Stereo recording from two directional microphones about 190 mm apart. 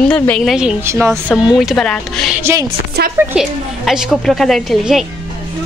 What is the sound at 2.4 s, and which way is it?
A woman's voice, 15° right (ahead or behind).